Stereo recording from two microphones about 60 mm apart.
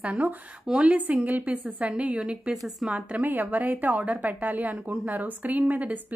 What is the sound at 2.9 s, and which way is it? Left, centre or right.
A woman's voice, right.